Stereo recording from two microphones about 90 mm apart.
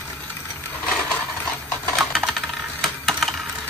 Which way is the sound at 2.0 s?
Centre (ahead or behind).